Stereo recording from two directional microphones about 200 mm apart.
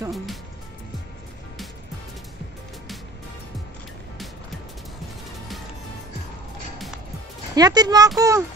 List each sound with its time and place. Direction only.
7.5 s speech: 20° right (ahead or behind)